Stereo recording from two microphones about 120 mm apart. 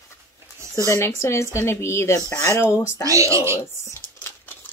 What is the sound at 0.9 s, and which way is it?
Speech, 25° left (ahead or behind).